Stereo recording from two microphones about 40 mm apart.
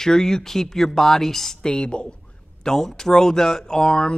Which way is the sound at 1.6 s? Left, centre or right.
Left.